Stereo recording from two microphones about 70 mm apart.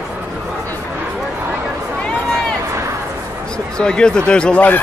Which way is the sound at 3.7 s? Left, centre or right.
Centre.